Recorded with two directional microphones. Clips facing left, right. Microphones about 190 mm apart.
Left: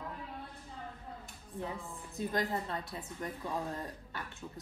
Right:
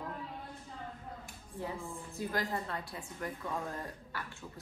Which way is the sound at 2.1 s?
20° left (ahead or behind).